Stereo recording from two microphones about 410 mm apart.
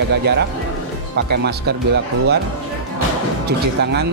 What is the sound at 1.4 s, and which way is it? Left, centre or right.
Speech, right.